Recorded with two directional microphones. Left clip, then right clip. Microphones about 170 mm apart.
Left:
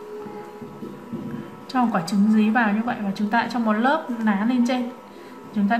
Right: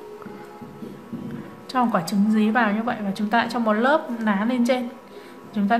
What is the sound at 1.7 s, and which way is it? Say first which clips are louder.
A woman's voice: right 1 dB; 30° right (ahead or behind).